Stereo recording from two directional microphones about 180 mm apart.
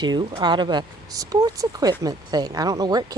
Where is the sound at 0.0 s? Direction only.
25° right (ahead or behind).